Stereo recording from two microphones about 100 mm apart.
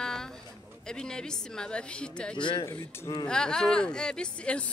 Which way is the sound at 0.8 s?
5° left (ahead or behind).